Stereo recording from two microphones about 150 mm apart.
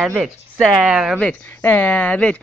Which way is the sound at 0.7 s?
5° right (ahead or behind).